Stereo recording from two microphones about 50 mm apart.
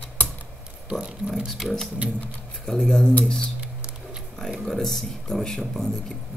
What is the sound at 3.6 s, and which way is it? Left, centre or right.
Music, right.